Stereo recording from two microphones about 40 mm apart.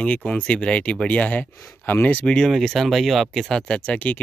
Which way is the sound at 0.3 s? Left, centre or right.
Left.